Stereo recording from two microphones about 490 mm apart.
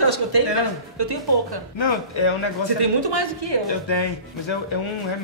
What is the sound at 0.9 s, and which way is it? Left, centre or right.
Speech, right.